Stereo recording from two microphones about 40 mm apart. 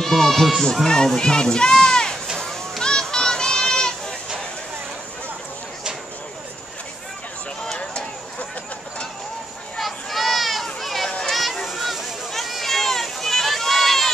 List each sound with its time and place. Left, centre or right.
0.0 s speech: centre
0.8 s speech: centre
2.3 s children playing: centre
2.8 s children playing: centre
7.6 s a sound: centre
9.8 s a sound: centre